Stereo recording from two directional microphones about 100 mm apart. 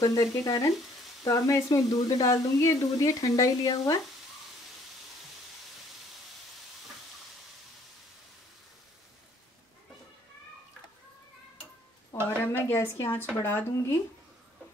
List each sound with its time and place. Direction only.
0.0 s speech: 40° left (ahead or behind)
12.6 s a woman's voice: 25° left (ahead or behind)